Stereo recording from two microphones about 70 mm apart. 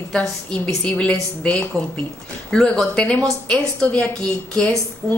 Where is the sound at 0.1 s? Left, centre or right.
Centre.